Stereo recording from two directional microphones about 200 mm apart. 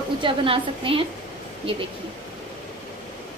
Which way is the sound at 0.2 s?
25° right (ahead or behind).